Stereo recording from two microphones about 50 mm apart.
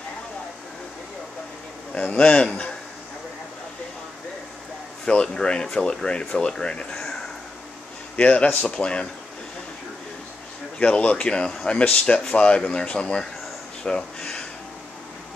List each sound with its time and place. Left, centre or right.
2.0 s speech: left
5.0 s speech: centre
8.2 s speech: left
10.8 s speech: left